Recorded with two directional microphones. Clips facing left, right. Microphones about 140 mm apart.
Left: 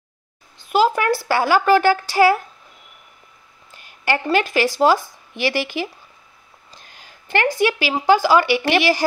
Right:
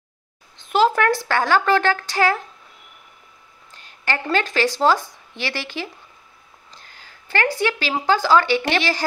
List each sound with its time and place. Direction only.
0.7 s speech: 5° left (ahead or behind)
3.7 s a woman's voice: 10° left (ahead or behind)
6.8 s a sound: 15° left (ahead or behind)
8.1 s speech: 10° left (ahead or behind)